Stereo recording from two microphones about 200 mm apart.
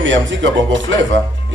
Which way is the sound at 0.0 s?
65° right (ahead or behind).